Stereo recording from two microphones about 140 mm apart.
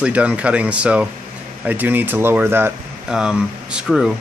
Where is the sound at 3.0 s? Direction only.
5° right (ahead or behind).